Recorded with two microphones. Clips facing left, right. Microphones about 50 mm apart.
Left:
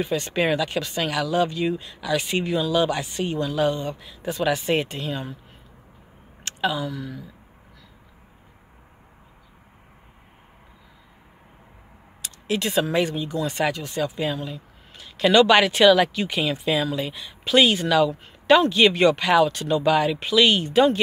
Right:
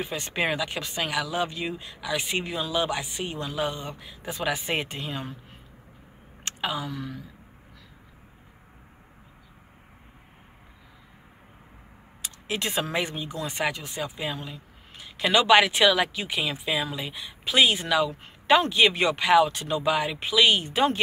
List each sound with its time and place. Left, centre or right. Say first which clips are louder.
0.0 s speech: left 5 dB; centre
6.4 s speech: left 5 dB; right
12.2 s a sound: left 5 dB; right
12.9 s speech: left 6 dB; centre